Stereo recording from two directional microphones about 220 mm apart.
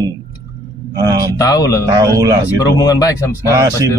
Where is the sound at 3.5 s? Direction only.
15° right (ahead or behind).